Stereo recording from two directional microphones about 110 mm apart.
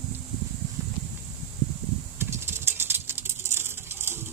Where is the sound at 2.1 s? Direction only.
20° right (ahead or behind).